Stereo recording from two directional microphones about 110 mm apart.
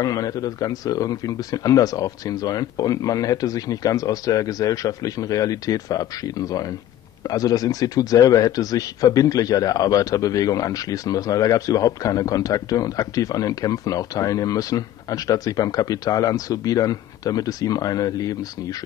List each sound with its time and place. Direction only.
0.0 s a man's voice: 35° left (ahead or behind)